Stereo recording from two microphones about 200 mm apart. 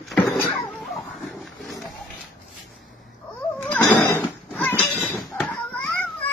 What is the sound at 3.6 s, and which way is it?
Sheep, 10° left (ahead or behind).